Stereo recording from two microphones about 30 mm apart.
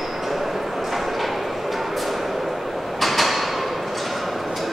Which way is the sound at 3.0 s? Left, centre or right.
Centre.